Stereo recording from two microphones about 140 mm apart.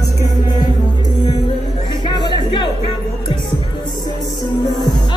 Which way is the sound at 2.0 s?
30° left (ahead or behind).